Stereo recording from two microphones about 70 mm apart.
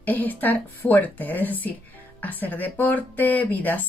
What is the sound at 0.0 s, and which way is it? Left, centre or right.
Speech, left.